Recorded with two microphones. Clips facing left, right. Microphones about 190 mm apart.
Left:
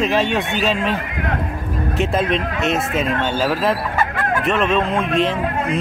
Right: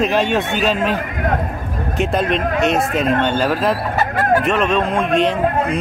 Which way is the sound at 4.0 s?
40° right (ahead or behind).